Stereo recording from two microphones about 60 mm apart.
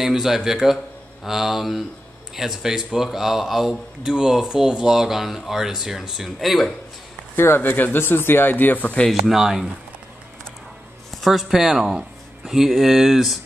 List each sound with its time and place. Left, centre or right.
0.0 s a man's voice: centre
1.2 s mantra: centre
2.3 s a man's voice: centre
7.3 s speech: left
9.1 s mantra: centre
11.1 s speech: centre